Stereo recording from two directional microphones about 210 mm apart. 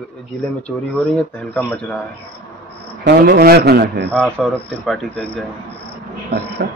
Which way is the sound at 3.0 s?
50° right (ahead or behind).